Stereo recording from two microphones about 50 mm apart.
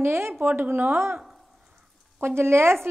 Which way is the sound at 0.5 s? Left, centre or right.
Right.